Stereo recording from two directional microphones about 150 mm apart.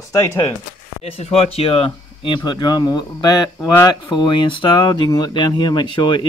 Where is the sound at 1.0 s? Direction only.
40° left (ahead or behind).